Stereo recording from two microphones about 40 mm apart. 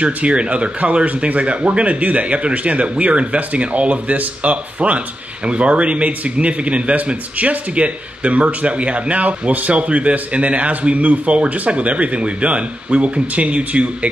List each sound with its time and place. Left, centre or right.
0.0 s speech: right